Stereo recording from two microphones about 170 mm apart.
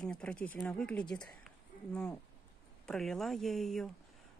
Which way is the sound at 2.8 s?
5° left (ahead or behind).